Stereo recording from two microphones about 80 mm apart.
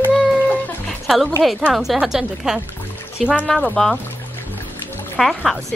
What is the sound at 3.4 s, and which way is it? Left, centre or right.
Speech, centre.